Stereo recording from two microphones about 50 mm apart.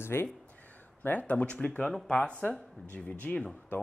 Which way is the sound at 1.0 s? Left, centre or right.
Left.